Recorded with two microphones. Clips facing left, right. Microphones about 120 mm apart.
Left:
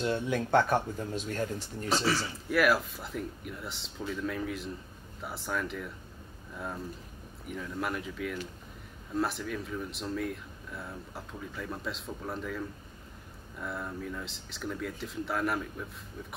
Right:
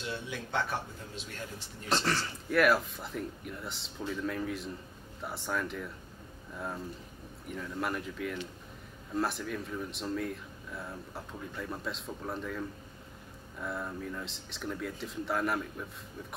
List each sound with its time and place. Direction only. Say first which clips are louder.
0.0 s speech: left 9 dB; 45° left (ahead or behind)
1.9 s speech: left 2 dB; 5° left (ahead or behind)